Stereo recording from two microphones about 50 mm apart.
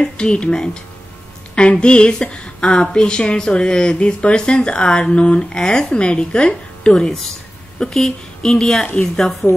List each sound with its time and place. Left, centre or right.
0.0 s speech: centre